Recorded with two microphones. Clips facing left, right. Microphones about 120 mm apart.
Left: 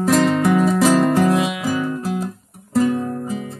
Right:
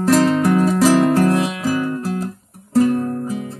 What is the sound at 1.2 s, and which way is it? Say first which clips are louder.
Music: right 1 dB; 10° left (ahead or behind).